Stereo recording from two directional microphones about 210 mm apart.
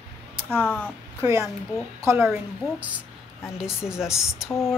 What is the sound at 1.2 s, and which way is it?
A woman's voice, 15° right (ahead or behind).